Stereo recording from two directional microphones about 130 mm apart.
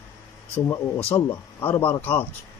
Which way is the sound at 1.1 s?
20° left (ahead or behind).